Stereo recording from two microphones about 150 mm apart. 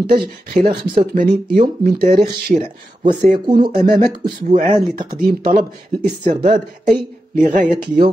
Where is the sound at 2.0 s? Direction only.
75° right (ahead or behind).